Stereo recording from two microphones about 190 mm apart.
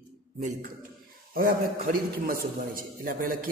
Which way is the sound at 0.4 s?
40° right (ahead or behind).